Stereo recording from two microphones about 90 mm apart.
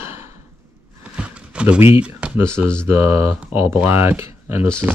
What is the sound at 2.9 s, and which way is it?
Speech, 30° right (ahead or behind).